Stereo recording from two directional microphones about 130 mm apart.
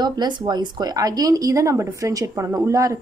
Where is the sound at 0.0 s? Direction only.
35° right (ahead or behind).